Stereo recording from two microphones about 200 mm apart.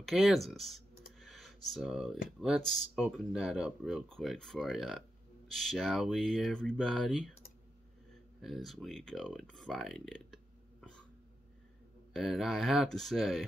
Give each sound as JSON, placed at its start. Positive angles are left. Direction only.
{"t": 0.0, "sound": "computer keyboard", "side_deg": 0}
{"t": 2.4, "sound": "speech", "side_deg": 0}
{"t": 8.4, "sound": "speech", "side_deg": 0}
{"t": 12.1, "sound": "speech", "side_deg": 0}